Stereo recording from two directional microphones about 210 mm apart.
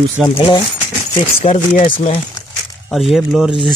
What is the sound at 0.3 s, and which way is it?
Speech, 25° left (ahead or behind).